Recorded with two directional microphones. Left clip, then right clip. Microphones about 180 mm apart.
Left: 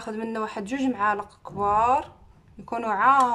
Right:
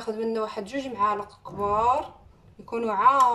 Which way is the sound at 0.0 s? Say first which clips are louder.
Right 2 dB; 50° left (ahead or behind).